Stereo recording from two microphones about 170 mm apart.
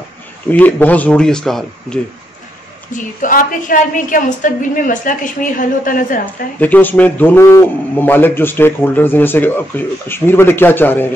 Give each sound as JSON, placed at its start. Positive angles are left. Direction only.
{"t": 0.5, "sound": "a man's voice", "side_deg": 10}
{"t": 2.9, "sound": "a woman's voice", "side_deg": 55}
{"t": 6.6, "sound": "a man's voice", "side_deg": 10}